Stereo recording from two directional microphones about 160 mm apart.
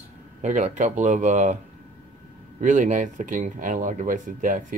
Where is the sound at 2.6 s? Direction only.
50° right (ahead or behind).